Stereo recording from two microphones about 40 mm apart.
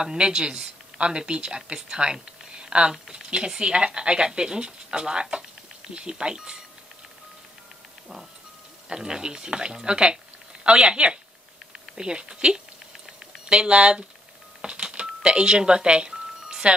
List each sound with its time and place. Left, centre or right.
0.0 s speech: centre
8.8 s speech: centre
14.6 s music: centre